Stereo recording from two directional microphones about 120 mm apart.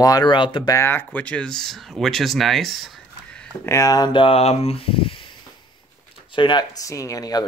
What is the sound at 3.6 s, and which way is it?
Speech, 30° left (ahead or behind).